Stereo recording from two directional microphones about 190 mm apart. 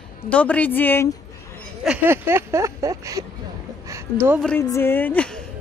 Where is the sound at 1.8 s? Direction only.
10° right (ahead or behind).